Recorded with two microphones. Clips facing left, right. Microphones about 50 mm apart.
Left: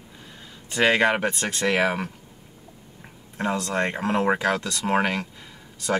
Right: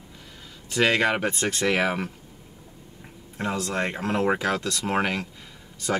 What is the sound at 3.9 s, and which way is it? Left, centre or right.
Speech, centre.